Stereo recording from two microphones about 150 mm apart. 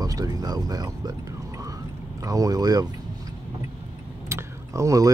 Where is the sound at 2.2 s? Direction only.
25° right (ahead or behind).